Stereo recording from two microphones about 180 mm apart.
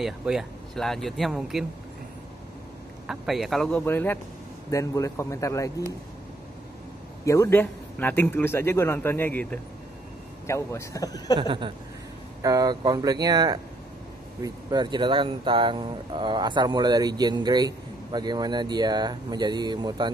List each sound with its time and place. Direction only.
0.0 s speech: centre (ahead or behind)
3.1 s a man's voice: centre (ahead or behind); by 5.9 s 15° left (ahead or behind)
7.2 s a man's voice: 15° left (ahead or behind)
11.3 s speech: 25° right (ahead or behind)